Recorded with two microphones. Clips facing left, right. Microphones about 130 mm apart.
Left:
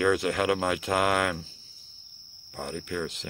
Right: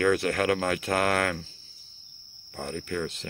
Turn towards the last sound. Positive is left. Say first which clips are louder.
# right 1 dB
turn(degrees=15)  # may be behind; listen again after turning